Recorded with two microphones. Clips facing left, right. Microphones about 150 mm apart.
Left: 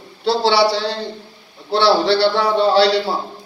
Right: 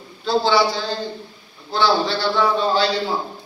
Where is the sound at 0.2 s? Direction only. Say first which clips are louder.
Left 2 dB; 75° left (ahead or behind).